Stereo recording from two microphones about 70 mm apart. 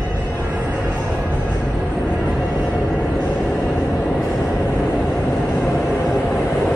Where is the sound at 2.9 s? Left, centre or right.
Centre.